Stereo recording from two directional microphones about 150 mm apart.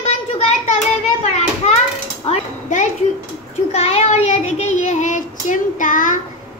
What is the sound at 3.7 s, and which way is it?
Child singing, 45° left (ahead or behind).